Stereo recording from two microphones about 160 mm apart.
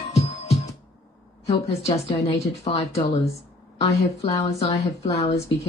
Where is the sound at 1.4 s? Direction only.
40° left (ahead or behind).